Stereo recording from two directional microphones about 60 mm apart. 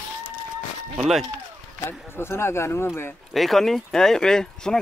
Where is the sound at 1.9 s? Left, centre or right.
Left.